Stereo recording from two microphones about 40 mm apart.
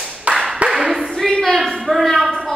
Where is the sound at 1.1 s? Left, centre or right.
Centre.